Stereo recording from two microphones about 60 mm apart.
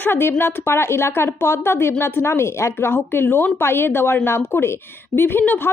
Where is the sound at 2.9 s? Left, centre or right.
Left.